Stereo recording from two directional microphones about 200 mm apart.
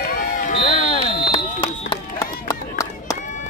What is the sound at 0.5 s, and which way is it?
Music, 35° left (ahead or behind).